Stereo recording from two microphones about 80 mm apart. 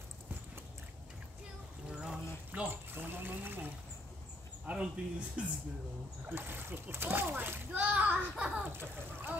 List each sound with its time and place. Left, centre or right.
2.0 s pour: centre
2.7 s water: right
4.6 s speech: centre
6.2 s a child's voice: right